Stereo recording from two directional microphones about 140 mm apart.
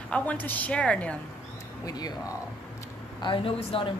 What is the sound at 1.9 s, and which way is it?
Speech, 25° left (ahead or behind).